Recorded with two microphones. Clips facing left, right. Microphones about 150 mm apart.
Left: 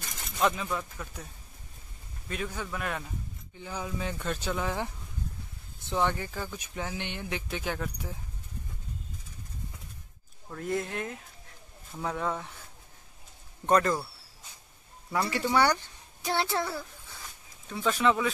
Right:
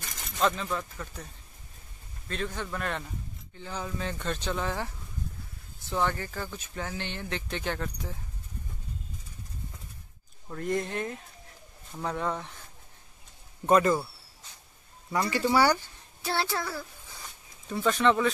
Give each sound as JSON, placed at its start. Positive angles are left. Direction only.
{"t": 0.4, "sound": "speech", "side_deg": 10}
{"t": 2.2, "sound": "speech", "side_deg": 10}
{"t": 10.5, "sound": "speech", "side_deg": 0}
{"t": 13.7, "sound": "speech", "side_deg": -5}
{"t": 15.0, "sound": "speech", "side_deg": 0}
{"t": 16.2, "sound": "a child's voice", "side_deg": 20}
{"t": 17.6, "sound": "speech", "side_deg": 0}